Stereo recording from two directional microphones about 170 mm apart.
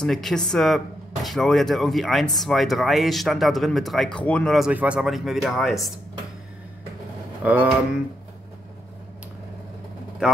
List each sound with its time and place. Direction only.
0.0 s speech: centre (ahead or behind)
7.4 s speech: 10° right (ahead or behind)